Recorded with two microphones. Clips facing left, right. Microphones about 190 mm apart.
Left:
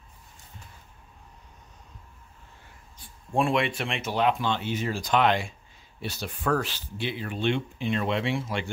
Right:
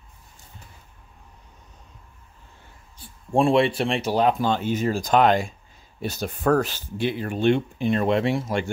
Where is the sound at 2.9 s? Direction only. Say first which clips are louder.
Right 5 dB; 30° right (ahead or behind).